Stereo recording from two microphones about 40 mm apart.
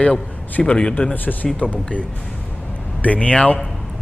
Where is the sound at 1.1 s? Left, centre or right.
Left.